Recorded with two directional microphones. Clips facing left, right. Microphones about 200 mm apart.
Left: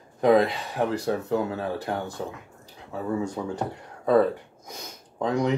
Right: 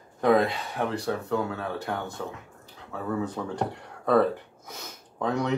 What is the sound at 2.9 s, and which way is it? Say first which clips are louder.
Speech: left 2 dB; 10° left (ahead or behind).